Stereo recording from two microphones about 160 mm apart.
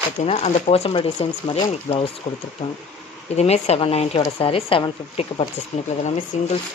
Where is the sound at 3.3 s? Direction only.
40° left (ahead or behind).